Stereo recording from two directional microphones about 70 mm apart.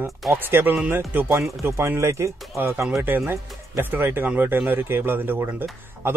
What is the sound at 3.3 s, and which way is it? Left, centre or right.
Speech, right.